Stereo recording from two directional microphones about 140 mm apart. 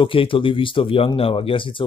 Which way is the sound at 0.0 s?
40° left (ahead or behind).